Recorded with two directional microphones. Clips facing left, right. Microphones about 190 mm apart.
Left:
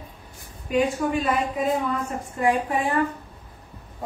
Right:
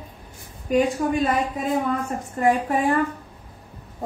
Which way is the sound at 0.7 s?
45° right (ahead or behind).